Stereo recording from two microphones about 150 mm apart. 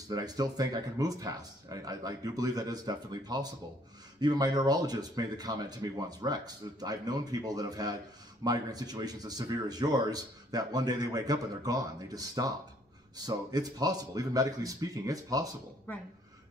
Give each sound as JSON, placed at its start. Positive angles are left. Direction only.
{"t": 0.1, "sound": "speech", "side_deg": -25}